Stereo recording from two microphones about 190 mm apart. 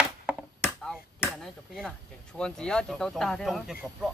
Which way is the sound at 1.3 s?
Centre (ahead or behind).